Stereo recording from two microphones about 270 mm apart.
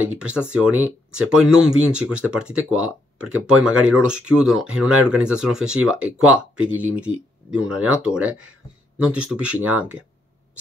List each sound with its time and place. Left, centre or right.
0.1 s speech: centre